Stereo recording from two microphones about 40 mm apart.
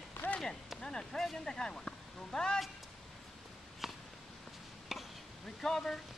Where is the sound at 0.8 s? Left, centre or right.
Centre.